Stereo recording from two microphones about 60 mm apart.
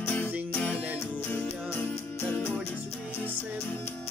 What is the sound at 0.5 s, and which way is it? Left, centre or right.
Music, left.